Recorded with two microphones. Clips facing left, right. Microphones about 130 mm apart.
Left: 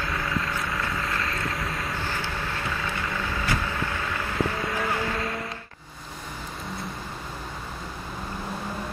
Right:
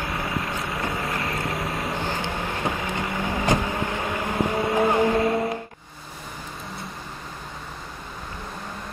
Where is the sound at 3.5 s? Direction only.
20° right (ahead or behind).